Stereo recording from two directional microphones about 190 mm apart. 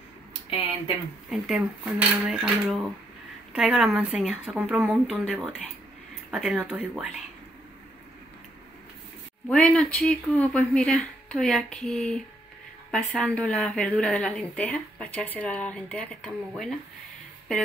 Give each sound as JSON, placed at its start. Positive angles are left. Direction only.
{"t": 0.5, "sound": "speech", "side_deg": 30}
{"t": 1.3, "sound": "a woman's voice", "side_deg": -5}
{"t": 9.5, "sound": "a woman's voice", "side_deg": 5}